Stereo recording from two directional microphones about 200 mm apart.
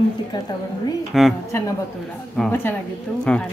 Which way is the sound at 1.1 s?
Centre (ahead or behind).